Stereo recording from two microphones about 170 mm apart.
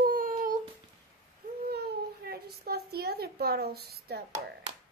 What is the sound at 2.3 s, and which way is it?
Speech, 65° right (ahead or behind).